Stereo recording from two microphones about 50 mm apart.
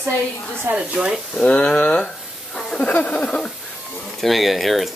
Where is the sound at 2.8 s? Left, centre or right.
Left.